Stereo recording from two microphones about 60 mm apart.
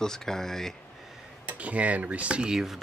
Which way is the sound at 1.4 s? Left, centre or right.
Right.